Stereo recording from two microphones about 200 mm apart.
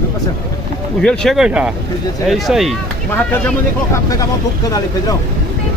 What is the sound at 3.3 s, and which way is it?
Speech, 10° left (ahead or behind).